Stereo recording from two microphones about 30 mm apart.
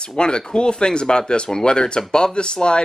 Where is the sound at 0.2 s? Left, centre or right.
Left.